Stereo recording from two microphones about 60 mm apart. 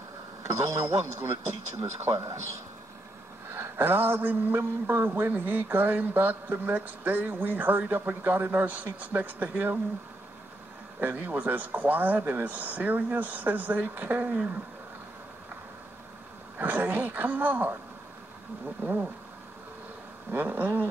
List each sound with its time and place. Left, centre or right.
0.4 s speech: right
3.4 s a man's voice: right
11.0 s speech: right
16.5 s speech: right
18.8 s a man's voice: right
20.2 s speech: right